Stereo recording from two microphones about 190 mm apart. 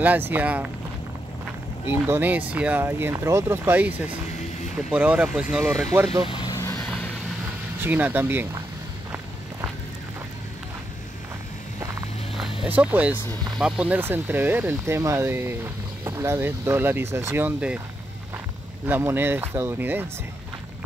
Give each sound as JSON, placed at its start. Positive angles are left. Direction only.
{"t": 0.0, "sound": "speech", "side_deg": -10}
{"t": 1.9, "sound": "speech", "side_deg": -10}
{"t": 6.2, "sound": "vehicle", "side_deg": 25}
{"t": 7.8, "sound": "speech", "side_deg": -10}
{"t": 12.6, "sound": "speech", "side_deg": -10}
{"t": 18.9, "sound": "speech", "side_deg": -10}